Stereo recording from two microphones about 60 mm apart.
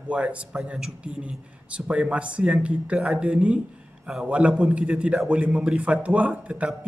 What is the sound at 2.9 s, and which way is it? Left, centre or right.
Speech, centre.